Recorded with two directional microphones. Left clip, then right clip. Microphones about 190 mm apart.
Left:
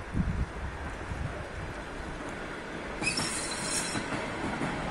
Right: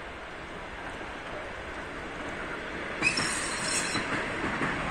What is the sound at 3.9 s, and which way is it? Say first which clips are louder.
Train: right 3 dB; 35° left (ahead or behind).